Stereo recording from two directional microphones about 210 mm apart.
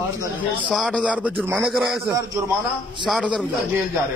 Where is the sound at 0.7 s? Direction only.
Centre (ahead or behind).